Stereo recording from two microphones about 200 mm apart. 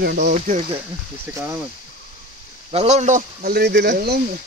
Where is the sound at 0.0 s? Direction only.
50° right (ahead or behind).